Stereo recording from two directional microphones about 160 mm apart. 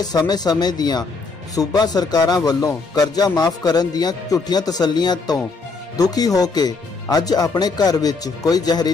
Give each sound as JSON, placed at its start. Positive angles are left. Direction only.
{"t": 0.0, "sound": "speech", "side_deg": 25}